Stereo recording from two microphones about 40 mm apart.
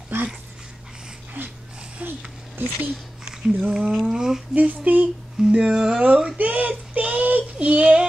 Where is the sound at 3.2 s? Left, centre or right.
Centre.